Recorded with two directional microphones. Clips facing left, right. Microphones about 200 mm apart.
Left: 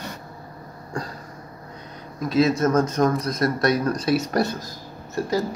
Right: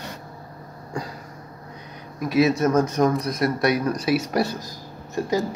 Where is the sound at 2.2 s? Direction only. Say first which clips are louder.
Even; 15° right (ahead or behind).